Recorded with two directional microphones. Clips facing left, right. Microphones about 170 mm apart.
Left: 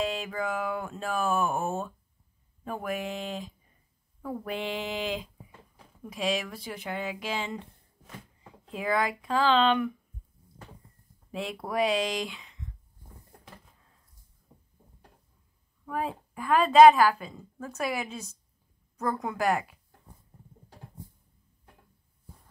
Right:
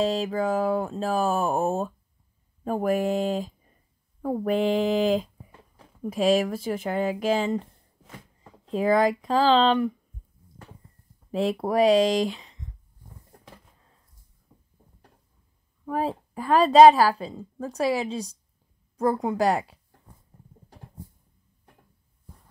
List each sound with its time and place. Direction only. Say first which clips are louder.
0.0 s a woman's voice: right 7 dB; 35° right (ahead or behind)
8.7 s a woman's voice: right 8 dB; 40° right (ahead or behind)
11.3 s a woman's voice: right 7 dB; 40° right (ahead or behind)
15.8 s a woman's voice: right 5 dB; 35° right (ahead or behind)